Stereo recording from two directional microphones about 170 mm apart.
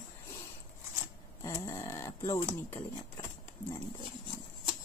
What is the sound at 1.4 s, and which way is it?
Speech, 20° left (ahead or behind).